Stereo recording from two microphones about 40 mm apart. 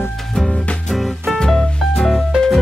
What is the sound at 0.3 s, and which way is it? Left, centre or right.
Music, centre.